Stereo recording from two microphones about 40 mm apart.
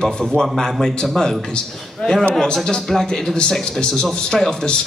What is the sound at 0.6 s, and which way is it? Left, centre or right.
A man's voice, centre.